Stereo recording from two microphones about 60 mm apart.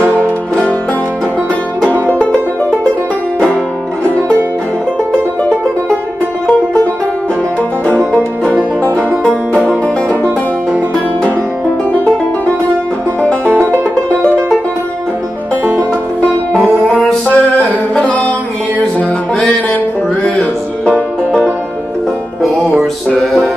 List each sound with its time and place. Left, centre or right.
0.0 s music: left
1.9 s music: left
2.1 s music: centre
6.4 s music: centre
9.2 s music: centre
11.9 s music: left
16.9 s music: left
20.2 s music: centre
22.4 s music: centre